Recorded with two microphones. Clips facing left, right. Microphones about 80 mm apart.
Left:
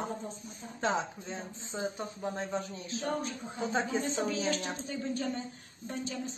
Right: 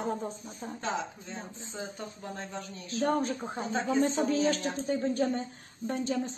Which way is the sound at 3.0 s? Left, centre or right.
Right.